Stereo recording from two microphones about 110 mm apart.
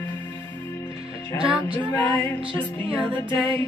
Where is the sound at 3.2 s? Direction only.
30° left (ahead or behind).